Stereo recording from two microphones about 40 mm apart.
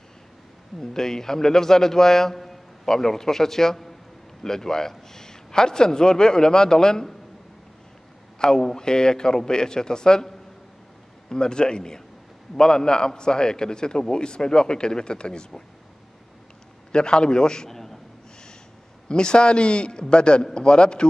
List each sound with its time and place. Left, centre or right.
0.7 s a man's voice: centre
8.4 s a man's voice: centre
16.9 s a man's voice: left
19.0 s a man's voice: left